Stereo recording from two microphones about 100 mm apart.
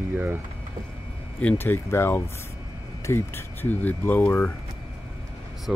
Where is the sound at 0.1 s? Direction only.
15° right (ahead or behind).